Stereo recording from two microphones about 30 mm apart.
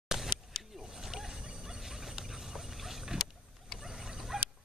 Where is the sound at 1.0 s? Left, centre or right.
Centre.